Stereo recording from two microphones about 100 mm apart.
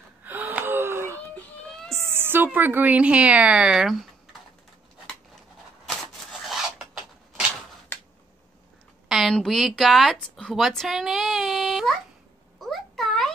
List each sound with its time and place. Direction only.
0.2 s gasp: 20° right (ahead or behind)
2.0 s a woman's voice: 25° right (ahead or behind); by 4.1 s 5° right (ahead or behind)
6.4 s filing: centre (ahead or behind)
9.1 s a woman's voice: 5° left (ahead or behind)
12.5 s a sound: centre (ahead or behind)